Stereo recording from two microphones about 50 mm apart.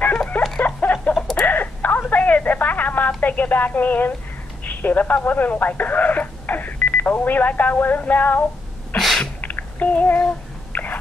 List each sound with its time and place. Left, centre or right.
0.6 s a sound: left
1.3 s telephone: left
3.2 s speech: left
8.0 s female singing: left
8.9 s sneeze: centre
9.4 s child singing: left
10.7 s biting: left